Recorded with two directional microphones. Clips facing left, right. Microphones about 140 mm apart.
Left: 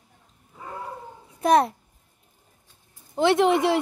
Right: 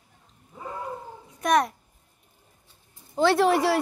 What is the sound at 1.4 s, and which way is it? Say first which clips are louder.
Speech: left 3 dB; 30° left (ahead or behind).